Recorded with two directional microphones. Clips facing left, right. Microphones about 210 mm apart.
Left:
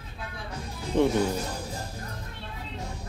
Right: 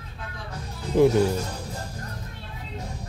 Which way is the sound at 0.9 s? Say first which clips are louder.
Right 5 dB; 5° right (ahead or behind).